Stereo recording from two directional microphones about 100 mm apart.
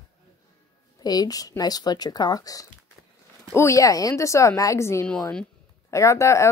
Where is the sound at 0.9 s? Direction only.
40° left (ahead or behind).